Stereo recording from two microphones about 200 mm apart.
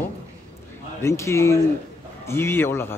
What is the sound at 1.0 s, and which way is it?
A man's voice, 15° left (ahead or behind).